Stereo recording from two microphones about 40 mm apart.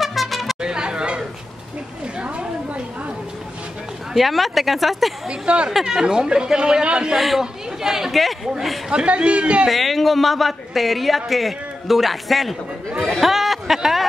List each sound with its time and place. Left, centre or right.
0.0 s music: centre
0.6 s chatter: right
4.1 s speech: centre
5.3 s speech: right
7.2 s speech: centre
8.9 s speech: right
9.7 s speech: centre